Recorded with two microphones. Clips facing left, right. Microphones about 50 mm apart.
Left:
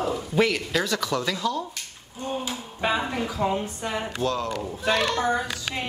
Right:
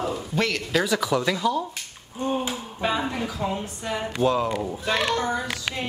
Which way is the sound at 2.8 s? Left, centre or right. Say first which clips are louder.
Even; centre.